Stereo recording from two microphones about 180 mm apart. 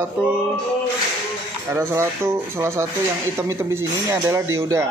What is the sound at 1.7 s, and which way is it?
A man's voice, 15° right (ahead or behind).